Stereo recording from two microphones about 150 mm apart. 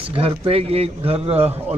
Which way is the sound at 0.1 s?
40° right (ahead or behind).